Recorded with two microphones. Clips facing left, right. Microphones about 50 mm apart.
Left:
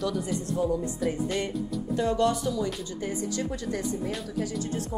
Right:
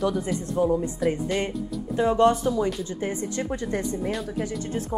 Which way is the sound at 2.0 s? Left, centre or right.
Right.